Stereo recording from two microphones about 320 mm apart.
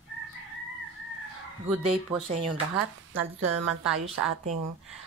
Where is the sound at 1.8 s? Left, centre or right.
Centre.